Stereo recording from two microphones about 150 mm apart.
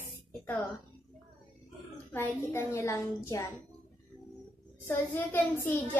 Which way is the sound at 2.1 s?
15° left (ahead or behind).